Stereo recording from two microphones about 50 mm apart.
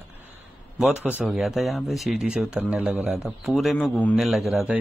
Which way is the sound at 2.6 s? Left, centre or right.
Right.